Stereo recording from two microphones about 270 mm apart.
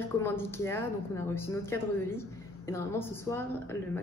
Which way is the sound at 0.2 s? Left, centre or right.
Centre.